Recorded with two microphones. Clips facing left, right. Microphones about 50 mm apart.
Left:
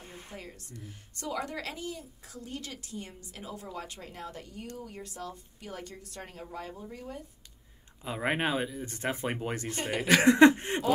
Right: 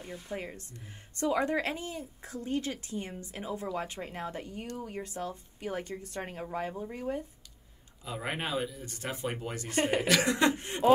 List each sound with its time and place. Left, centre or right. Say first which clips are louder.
0.0 s speech: right 4 dB; left
0.3 s speech: right 9 dB; right
8.0 s speech: left 5 dB; left
9.7 s speech: right 7 dB; right
10.0 s speech: left 11 dB; left